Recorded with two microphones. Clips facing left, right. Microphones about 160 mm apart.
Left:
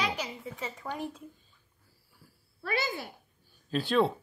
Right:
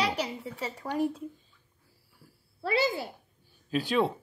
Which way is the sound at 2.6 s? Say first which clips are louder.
Right 5 dB; 30° right (ahead or behind).